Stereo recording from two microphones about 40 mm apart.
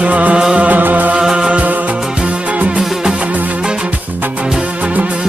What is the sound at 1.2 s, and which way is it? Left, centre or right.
Music, right.